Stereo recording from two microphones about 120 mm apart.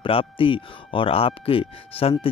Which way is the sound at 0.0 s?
45° left (ahead or behind).